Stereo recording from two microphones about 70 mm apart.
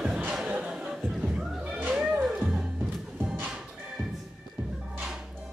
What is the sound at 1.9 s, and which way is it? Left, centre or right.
Music, centre.